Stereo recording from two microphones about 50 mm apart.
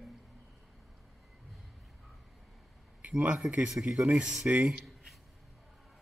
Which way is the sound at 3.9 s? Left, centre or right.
Right.